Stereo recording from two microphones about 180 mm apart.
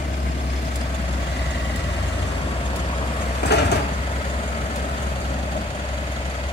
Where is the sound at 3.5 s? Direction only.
70° left (ahead or behind).